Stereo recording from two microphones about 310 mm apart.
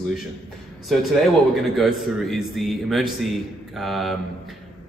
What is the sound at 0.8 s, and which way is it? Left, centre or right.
A man's voice, centre.